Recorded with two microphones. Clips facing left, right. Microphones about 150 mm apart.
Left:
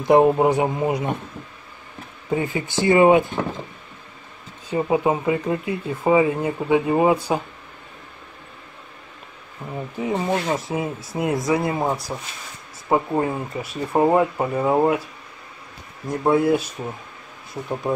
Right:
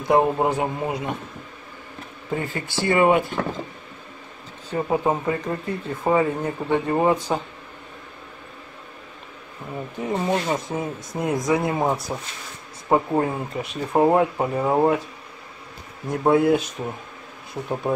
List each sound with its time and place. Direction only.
0.1 s speech: 15° left (ahead or behind)
2.3 s speech: 15° left (ahead or behind)
4.6 s speech: 10° left (ahead or behind)
9.9 s speech: 5° left (ahead or behind)
16.1 s speech: centre (ahead or behind)